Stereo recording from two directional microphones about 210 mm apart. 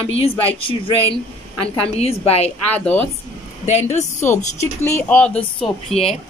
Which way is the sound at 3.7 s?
30° left (ahead or behind).